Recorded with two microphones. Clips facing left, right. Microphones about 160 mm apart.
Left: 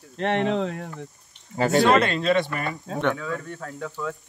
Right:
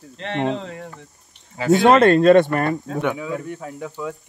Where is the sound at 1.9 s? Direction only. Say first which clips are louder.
Right 8 dB; 50° right (ahead or behind).